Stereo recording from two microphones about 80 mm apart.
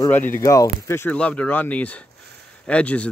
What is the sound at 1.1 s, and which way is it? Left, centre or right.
Speech, centre.